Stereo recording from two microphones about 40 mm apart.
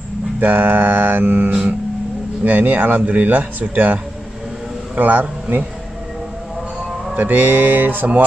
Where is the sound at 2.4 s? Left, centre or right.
Right.